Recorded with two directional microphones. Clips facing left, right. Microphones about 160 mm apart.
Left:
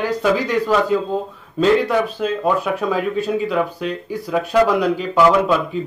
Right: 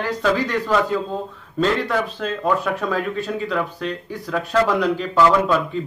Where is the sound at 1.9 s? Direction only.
10° left (ahead or behind).